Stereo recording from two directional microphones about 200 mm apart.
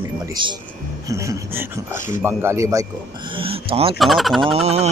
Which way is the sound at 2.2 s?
15° right (ahead or behind).